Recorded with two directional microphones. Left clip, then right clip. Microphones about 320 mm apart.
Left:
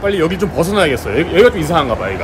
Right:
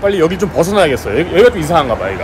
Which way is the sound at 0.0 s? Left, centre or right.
Centre.